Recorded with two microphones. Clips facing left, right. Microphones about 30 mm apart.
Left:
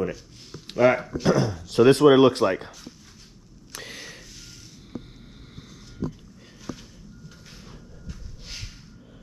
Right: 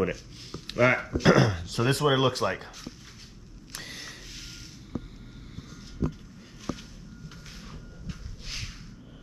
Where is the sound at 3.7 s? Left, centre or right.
Left.